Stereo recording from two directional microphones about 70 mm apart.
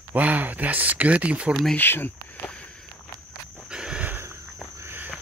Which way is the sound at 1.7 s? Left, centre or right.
Left.